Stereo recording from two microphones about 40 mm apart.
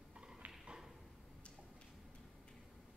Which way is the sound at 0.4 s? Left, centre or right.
Right.